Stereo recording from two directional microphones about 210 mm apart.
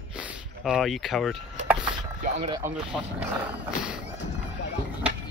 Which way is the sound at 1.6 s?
5° right (ahead or behind).